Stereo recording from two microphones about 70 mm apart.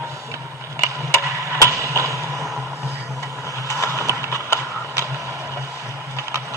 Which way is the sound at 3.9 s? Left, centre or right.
Right.